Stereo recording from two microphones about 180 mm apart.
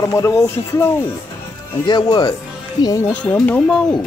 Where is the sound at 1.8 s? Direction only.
25° left (ahead or behind).